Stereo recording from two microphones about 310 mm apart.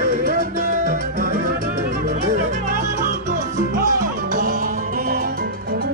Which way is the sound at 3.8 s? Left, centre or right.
Right.